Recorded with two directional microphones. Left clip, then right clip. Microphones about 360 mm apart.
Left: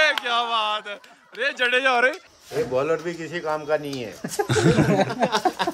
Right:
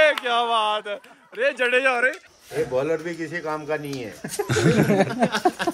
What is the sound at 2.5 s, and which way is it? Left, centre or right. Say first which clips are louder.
Speech: left 1 dB; left.